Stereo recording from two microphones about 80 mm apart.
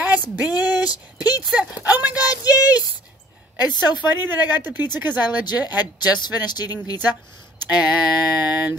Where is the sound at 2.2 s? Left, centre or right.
Left.